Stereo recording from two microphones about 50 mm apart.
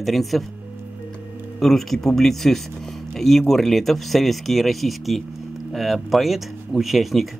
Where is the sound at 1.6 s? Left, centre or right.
Centre.